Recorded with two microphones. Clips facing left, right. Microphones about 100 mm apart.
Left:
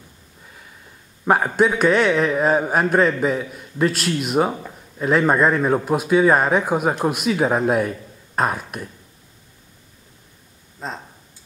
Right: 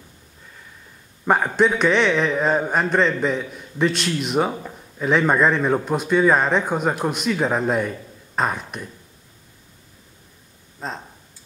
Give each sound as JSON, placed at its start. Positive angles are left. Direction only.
{"t": 1.2, "sound": "a man's voice", "side_deg": 5}
{"t": 10.8, "sound": "a man's voice", "side_deg": 0}